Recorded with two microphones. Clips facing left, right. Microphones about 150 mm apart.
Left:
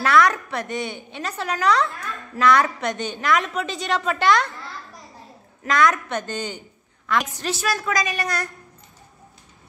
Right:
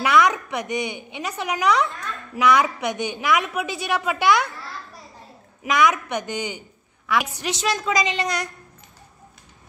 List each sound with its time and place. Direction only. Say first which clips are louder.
0.0 s a woman's voice: even; 15° right (ahead or behind)
5.6 s a woman's voice: even; 15° right (ahead or behind)